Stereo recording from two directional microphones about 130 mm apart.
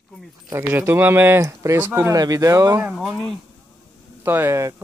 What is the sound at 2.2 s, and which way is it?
Speech, 30° right (ahead or behind).